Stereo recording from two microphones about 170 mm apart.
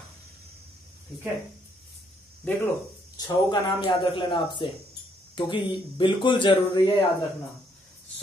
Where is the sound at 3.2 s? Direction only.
25° left (ahead or behind).